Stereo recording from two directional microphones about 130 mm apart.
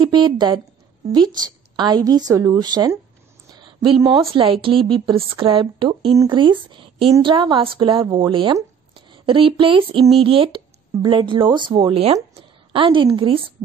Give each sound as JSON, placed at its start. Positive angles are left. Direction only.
{"t": 0.0, "sound": "a woman's voice", "side_deg": -35}
{"t": 2.0, "sound": "a woman's voice", "side_deg": -30}
{"t": 4.3, "sound": "a woman's voice", "side_deg": -45}